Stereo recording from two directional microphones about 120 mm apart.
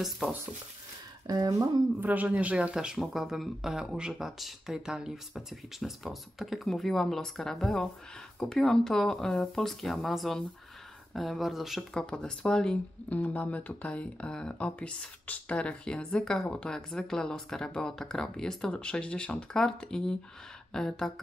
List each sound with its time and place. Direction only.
1.2 s speech: 30° right (ahead or behind)
2.0 s speech: 15° right (ahead or behind); by 21.1 s 5° left (ahead or behind)